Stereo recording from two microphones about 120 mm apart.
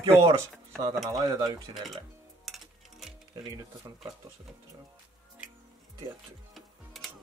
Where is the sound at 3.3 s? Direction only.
30° right (ahead or behind).